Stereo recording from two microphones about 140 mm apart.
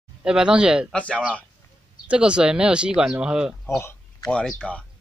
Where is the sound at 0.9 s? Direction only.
10° left (ahead or behind).